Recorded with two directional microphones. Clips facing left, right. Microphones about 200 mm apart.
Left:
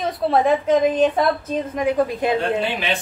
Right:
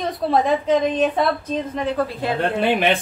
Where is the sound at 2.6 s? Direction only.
55° right (ahead or behind).